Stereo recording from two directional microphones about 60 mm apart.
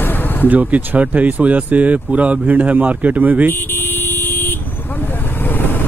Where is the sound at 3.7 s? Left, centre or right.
Left.